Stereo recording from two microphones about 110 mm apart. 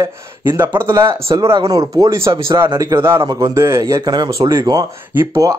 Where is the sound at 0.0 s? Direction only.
25° right (ahead or behind).